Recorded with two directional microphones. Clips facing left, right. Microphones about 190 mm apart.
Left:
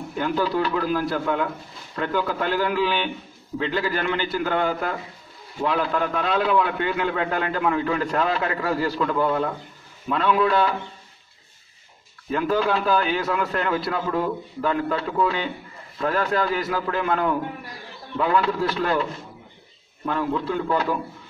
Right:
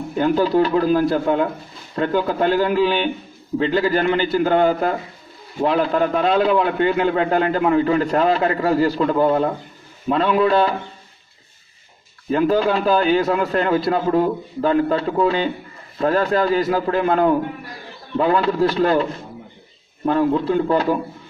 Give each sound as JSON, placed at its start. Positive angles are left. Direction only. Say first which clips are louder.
{"t": 0.1, "sound": "a man's voice", "louder": "right 7 dB", "side_deg": -35}
{"t": 12.3, "sound": "a man's voice", "louder": "right 5 dB", "side_deg": -30}
{"t": 20.1, "sound": "a man's voice", "louder": "right 7 dB", "side_deg": -35}